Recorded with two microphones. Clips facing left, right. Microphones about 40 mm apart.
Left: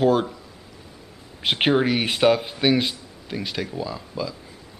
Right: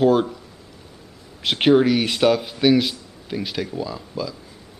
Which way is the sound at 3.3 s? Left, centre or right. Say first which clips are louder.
Right 2 dB; centre.